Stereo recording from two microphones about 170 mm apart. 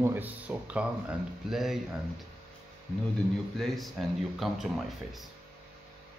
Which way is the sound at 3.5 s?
Centre (ahead or behind).